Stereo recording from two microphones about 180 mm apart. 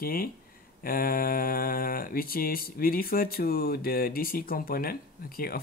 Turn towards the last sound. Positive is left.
turn(degrees=55)  # may be behind; listen again after turning